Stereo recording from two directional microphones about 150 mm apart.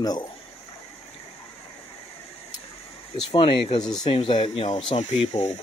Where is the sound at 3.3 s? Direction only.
35° left (ahead or behind).